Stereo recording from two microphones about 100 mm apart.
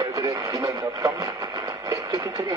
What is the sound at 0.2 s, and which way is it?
Speech, 35° right (ahead or behind).